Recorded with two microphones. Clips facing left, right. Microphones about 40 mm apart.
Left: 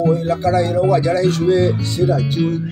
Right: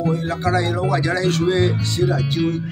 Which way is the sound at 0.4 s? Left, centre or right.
Right.